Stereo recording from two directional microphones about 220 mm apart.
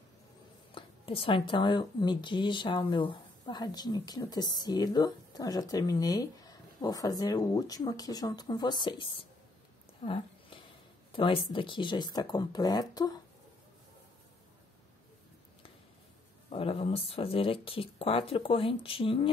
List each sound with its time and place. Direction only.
0.7 s speech: 25° left (ahead or behind)
10.0 s a sound: 25° left (ahead or behind)
11.1 s speech: 25° left (ahead or behind)
16.4 s speech: 25° left (ahead or behind)